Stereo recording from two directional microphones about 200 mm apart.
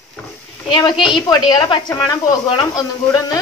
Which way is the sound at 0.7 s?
20° left (ahead or behind).